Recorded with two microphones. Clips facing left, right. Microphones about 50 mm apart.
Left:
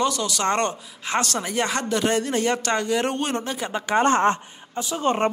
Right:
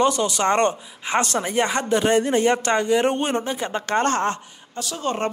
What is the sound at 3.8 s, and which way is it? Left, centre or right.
A woman's voice, centre.